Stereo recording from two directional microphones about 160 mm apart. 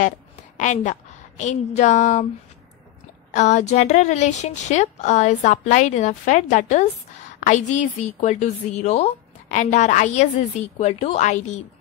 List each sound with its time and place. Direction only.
0.6 s a woman's voice: 50° left (ahead or behind)
3.3 s a woman's voice: 45° left (ahead or behind)